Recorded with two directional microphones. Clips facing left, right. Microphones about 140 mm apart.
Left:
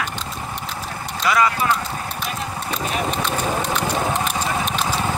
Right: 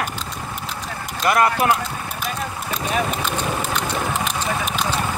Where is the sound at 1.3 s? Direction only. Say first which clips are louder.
Right 1 dB; 55° right (ahead or behind).